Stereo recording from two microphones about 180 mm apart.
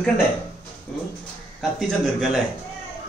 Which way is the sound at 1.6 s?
Centre (ahead or behind).